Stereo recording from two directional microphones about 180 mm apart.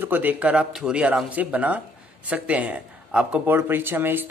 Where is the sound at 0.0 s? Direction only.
10° right (ahead or behind).